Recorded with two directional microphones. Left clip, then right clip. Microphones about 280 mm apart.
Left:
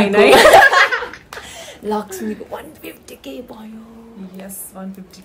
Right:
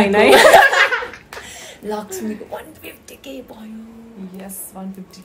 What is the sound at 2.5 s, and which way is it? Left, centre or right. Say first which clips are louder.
Speech: left 1 dB; centre.